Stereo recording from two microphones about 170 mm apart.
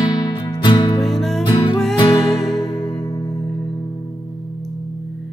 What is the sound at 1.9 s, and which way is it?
Music, 25° left (ahead or behind).